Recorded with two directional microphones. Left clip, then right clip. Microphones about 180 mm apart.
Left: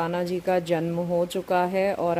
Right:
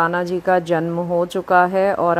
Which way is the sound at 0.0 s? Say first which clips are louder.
Right 8 dB; 10° right (ahead or behind).